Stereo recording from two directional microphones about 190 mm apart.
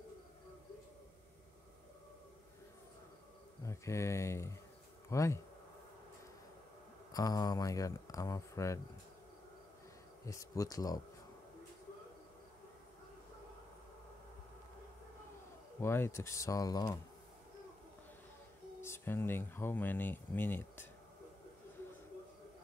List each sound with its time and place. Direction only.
3.6 s speech: 15° left (ahead or behind)
7.1 s speech: 20° left (ahead or behind)
10.2 s speech: 15° left (ahead or behind)
15.8 s speech: 15° left (ahead or behind)
18.8 s speech: 10° left (ahead or behind)